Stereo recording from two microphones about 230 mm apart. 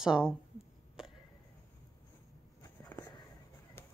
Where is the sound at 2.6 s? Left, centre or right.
Centre.